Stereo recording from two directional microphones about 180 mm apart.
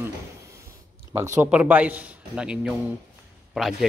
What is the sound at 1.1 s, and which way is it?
Speech, 15° right (ahead or behind).